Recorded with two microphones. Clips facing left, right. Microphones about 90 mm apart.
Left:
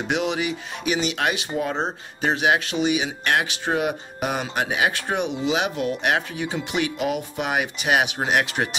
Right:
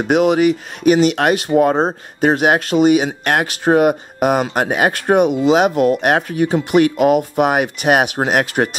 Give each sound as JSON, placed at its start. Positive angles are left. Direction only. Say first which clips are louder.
{"t": 0.0, "sound": "speech", "louder": "right 11 dB", "side_deg": -50}